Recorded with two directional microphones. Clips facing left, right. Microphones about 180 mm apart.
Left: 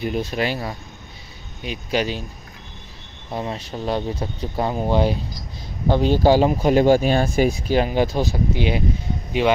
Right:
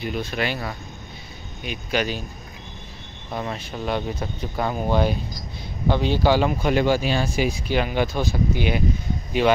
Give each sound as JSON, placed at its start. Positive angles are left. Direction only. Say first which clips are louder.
{"t": 0.0, "sound": "speech", "louder": "left 3 dB", "side_deg": 40}
{"t": 3.3, "sound": "speech", "louder": "left 2 dB", "side_deg": 30}
{"t": 5.9, "sound": "speech", "louder": "left 4 dB", "side_deg": 40}
{"t": 7.6, "sound": "speech", "louder": "left 4 dB", "side_deg": 35}